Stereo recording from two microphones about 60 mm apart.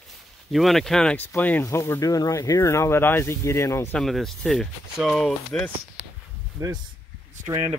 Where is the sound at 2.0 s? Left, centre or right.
Left.